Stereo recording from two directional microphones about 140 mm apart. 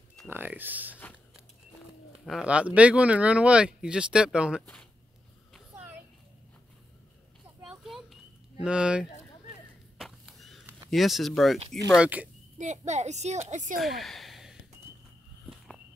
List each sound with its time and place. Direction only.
0.3 s speech: 15° right (ahead or behind)
2.2 s speech: 5° right (ahead or behind)
7.8 s a sound: centre (ahead or behind)
8.6 s speech: 5° right (ahead or behind)
9.9 s a sound: centre (ahead or behind)
10.9 s speech: centre (ahead or behind)
12.0 s speech: 10° right (ahead or behind)
12.5 s a woman's voice: 60° right (ahead or behind)
13.7 s a sound: centre (ahead or behind)